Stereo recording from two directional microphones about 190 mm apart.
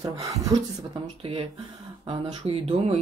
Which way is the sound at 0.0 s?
20° right (ahead or behind).